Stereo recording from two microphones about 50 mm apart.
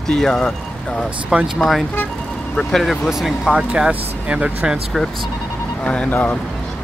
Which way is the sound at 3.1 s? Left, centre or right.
Centre.